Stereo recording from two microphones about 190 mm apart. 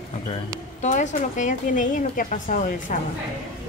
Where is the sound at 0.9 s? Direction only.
40° left (ahead or behind).